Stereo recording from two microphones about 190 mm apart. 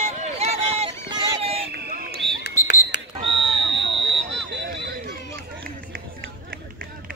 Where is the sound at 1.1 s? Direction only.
30° right (ahead or behind).